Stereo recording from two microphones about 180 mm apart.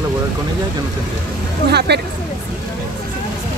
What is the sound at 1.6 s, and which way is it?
Speech, 65° right (ahead or behind).